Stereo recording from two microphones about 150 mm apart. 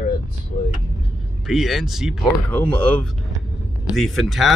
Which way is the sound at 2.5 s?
10° left (ahead or behind).